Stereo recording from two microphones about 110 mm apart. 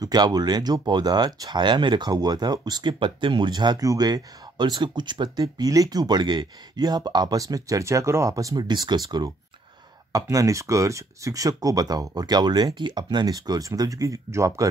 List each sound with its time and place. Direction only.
0.0 s speech: 35° right (ahead or behind)